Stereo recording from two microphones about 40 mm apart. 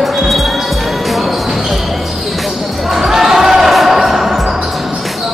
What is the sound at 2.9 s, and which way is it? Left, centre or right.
Basketball bounce, centre.